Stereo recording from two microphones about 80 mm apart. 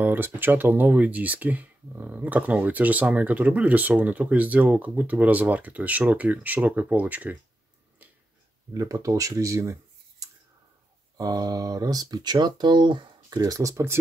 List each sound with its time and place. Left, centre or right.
0.0 s speech: right
8.7 s speech: right
13.4 s speech: right